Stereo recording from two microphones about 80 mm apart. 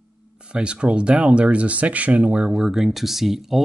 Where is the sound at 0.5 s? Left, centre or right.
Centre.